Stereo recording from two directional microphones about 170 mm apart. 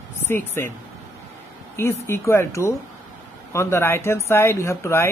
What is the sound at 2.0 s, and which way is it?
Speech, 15° left (ahead or behind).